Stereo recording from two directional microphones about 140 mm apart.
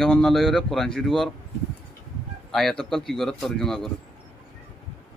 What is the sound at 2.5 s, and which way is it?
Speech, centre (ahead or behind).